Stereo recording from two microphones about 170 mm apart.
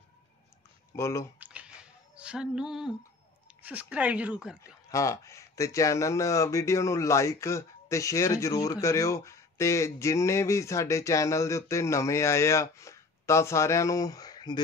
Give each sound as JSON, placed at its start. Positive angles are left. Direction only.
{"t": 0.9, "sound": "speech", "side_deg": 15}
{"t": 1.4, "sound": "a sound", "side_deg": -5}
{"t": 3.4, "sound": "speech", "side_deg": -10}
{"t": 4.9, "sound": "speech", "side_deg": 20}